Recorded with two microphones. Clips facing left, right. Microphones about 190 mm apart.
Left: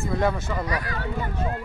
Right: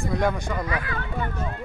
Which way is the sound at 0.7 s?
40° left (ahead or behind).